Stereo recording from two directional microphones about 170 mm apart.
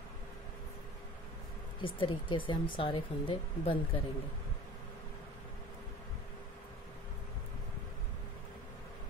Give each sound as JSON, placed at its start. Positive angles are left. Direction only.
{"t": 1.8, "sound": "speech", "side_deg": 30}